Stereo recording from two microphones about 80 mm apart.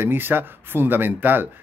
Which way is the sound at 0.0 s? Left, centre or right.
Right.